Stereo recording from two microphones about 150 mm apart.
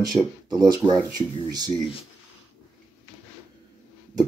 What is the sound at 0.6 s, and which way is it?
Speech, 25° right (ahead or behind).